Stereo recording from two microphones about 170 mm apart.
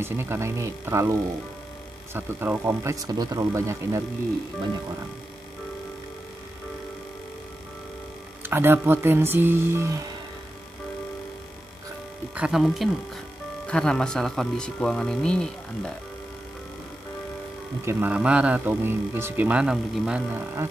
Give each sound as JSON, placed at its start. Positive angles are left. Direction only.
{"t": 0.0, "sound": "speech", "side_deg": -15}
{"t": 2.1, "sound": "speech", "side_deg": -10}
{"t": 8.4, "sound": "speech", "side_deg": -10}
{"t": 12.4, "sound": "speech", "side_deg": -5}
{"t": 17.8, "sound": "speech", "side_deg": -10}